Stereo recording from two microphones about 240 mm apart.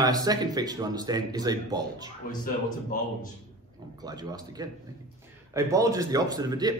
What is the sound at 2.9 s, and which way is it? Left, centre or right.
Speech, left.